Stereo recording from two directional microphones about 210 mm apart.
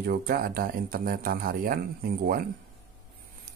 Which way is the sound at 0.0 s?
45° right (ahead or behind).